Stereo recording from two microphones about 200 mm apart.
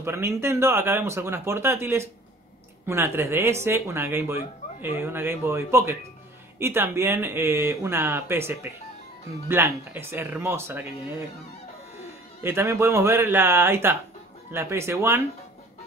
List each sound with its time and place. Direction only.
0.0 s speech: 15° right (ahead or behind)
12.4 s speech: 10° right (ahead or behind)